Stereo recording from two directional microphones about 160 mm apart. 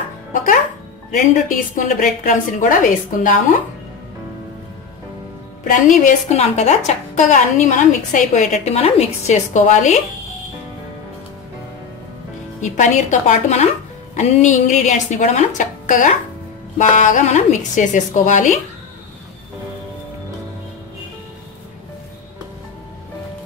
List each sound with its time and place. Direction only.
0.3 s music: 55° left (ahead or behind)
1.1 s a woman's voice: 55° left (ahead or behind)
5.6 s a woman's voice: 55° left (ahead or behind)
12.5 s a woman's voice: 50° left (ahead or behind)